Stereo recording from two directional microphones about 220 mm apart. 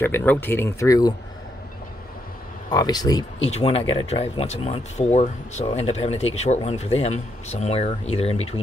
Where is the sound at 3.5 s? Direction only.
30° left (ahead or behind).